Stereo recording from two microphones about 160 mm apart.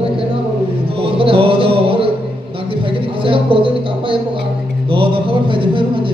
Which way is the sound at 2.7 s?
35° right (ahead or behind).